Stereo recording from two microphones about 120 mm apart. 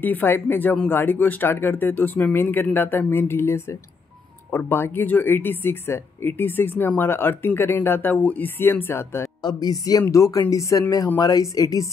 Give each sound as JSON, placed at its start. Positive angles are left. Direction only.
{"t": 0.0, "sound": "speech", "side_deg": 15}
{"t": 9.4, "sound": "speech", "side_deg": 35}